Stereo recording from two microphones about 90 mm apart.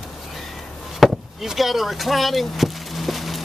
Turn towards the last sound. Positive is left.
turn(degrees=0)  # may be behind; listen again after turning